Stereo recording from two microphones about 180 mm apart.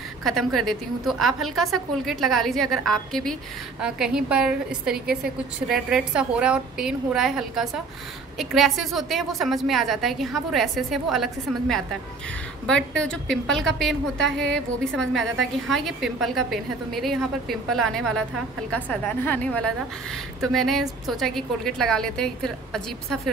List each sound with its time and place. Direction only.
0.2 s a woman's voice: centre (ahead or behind)